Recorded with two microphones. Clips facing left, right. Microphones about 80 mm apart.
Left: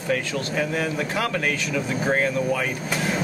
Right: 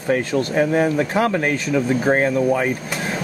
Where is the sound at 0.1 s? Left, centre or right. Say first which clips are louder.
Right 6 dB; right.